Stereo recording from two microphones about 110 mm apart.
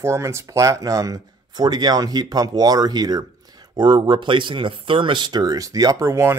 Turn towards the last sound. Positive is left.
turn(degrees=-25)  # may be behind; listen again after turning